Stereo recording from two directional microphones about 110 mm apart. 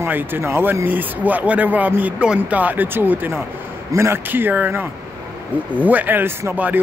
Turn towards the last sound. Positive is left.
turn(degrees=-20)  # may be behind; listen again after turning